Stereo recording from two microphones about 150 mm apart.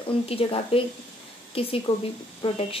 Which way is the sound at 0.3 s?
40° left (ahead or behind).